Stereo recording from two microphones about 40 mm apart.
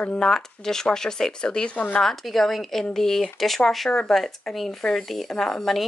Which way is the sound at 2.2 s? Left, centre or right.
Centre.